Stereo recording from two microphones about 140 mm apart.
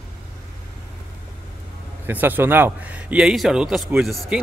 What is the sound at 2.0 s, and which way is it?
A man's voice, 15° right (ahead or behind).